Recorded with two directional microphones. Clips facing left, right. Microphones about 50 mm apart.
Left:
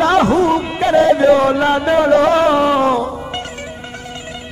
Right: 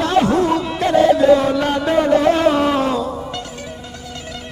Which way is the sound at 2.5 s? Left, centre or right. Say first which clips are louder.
Left 3 dB; left.